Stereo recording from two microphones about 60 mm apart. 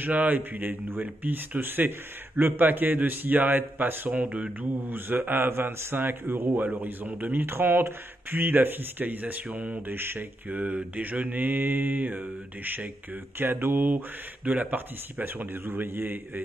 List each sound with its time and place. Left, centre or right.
0.0 s speech: right
4.8 s speech: right
7.4 s speech: right
10.8 s mantra: right
13.4 s speech: right